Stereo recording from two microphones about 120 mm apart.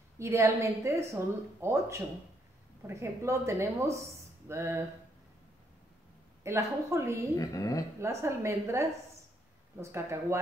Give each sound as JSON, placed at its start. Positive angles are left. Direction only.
{"t": 0.2, "sound": "a woman's voice", "side_deg": -25}
{"t": 6.4, "sound": "a woman's voice", "side_deg": -25}
{"t": 7.3, "sound": "a woman's voice", "side_deg": 30}
{"t": 8.0, "sound": "a woman's voice", "side_deg": -25}